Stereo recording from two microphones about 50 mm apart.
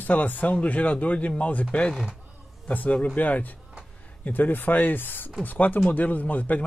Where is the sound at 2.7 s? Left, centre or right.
Left.